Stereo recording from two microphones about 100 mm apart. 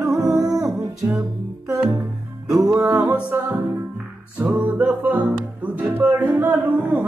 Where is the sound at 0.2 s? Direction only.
35° right (ahead or behind).